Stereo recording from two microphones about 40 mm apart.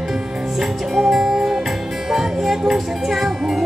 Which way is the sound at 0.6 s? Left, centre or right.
Centre.